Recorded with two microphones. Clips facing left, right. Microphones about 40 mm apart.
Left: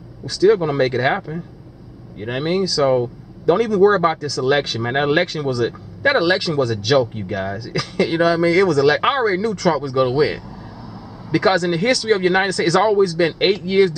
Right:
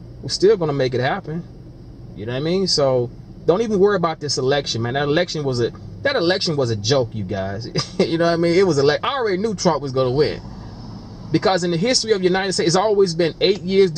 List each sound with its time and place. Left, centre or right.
0.3 s speech: centre